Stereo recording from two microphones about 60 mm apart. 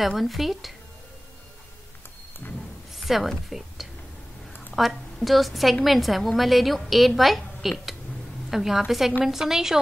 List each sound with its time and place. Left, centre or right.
0.0 s a woman's voice: centre
2.4 s a sound: left
3.0 s a woman's voice: centre